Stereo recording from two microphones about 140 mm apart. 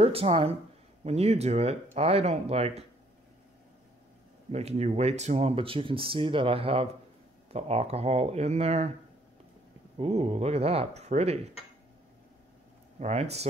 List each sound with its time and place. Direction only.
0.0 s speech: 45° right (ahead or behind)
4.5 s speech: 50° right (ahead or behind)
9.9 s speech: 50° right (ahead or behind)
13.0 s speech: 50° right (ahead or behind)